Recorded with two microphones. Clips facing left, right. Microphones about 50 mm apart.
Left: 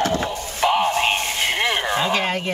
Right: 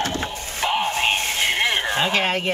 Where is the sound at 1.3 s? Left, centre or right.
Centre.